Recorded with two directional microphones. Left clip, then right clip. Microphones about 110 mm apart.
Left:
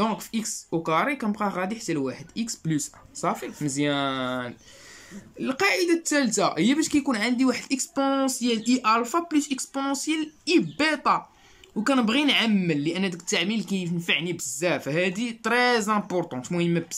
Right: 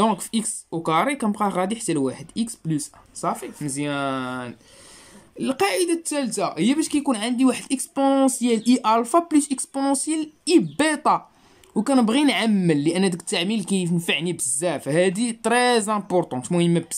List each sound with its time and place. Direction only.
0.0 s speech: 30° right (ahead or behind)
2.6 s speech: 15° right (ahead or behind)
5.4 s speech: 25° right (ahead or behind)